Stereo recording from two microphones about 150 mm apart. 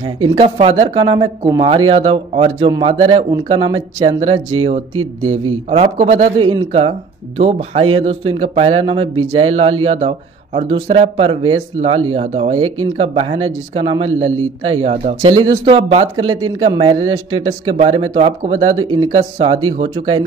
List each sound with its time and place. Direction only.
0.4 s speech: 40° right (ahead or behind)
16.3 s speech: 30° right (ahead or behind)